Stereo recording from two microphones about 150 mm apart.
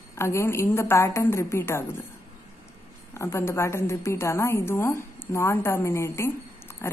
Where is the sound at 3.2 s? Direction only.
20° left (ahead or behind).